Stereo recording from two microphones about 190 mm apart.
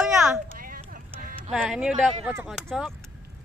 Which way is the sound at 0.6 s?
45° right (ahead or behind).